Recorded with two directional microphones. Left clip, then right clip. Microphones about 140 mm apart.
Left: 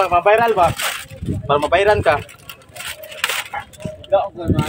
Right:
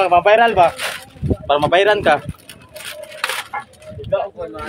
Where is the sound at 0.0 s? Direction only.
25° right (ahead or behind).